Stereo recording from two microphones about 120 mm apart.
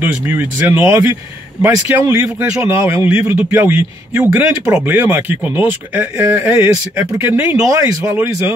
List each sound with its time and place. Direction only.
0.0 s speech: 20° right (ahead or behind)
2.9 s a man's voice: 50° left (ahead or behind)
3.3 s speech: 20° right (ahead or behind)